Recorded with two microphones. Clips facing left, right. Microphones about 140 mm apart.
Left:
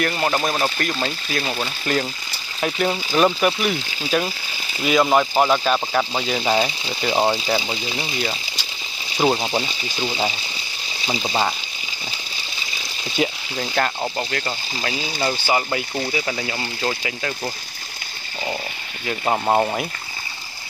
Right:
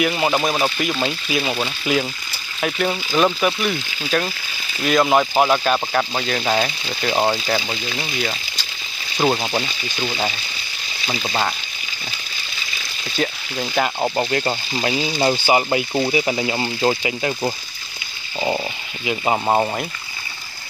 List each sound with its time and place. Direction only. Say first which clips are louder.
0.0 s speech: right 2 dB; 5° right (ahead or behind)
9.7 s speech: even; 25° left (ahead or behind)
13.2 s speech: left 1 dB; 10° left (ahead or behind)
13.6 s speech: right 1 dB; 10° right (ahead or behind)
14.0 s speech: right 5 dB; 25° right (ahead or behind)
19.0 s speech: right 1 dB; 10° right (ahead or behind)